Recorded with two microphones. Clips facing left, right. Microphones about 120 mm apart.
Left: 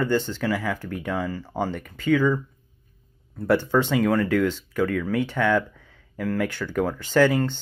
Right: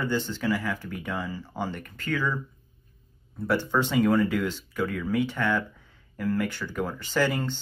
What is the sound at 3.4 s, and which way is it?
Speech, 75° left (ahead or behind).